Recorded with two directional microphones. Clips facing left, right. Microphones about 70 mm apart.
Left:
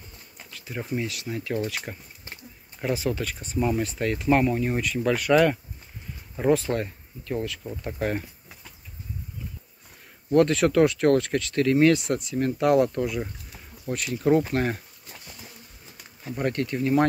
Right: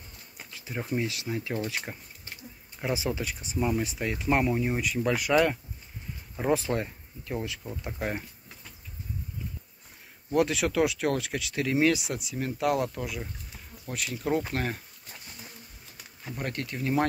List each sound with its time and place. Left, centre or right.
0.5 s a sound: right
0.9 s speech: right
1.9 s speech: centre
2.8 s speech: centre
6.5 s speech: right
7.8 s speech: centre
10.3 s speech: centre
16.3 s speech: centre